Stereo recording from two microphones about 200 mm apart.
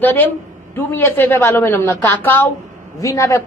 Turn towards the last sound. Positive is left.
turn(degrees=15)  # may be behind; listen again after turning